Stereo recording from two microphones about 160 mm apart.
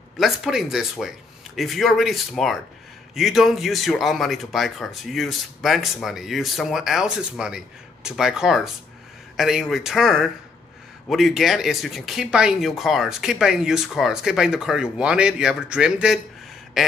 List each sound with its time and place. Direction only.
0.2 s speech: centre (ahead or behind)